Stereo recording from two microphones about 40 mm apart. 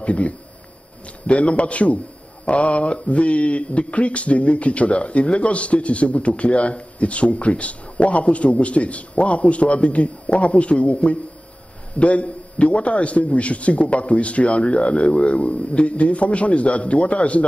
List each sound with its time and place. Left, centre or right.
0.0 s speech: left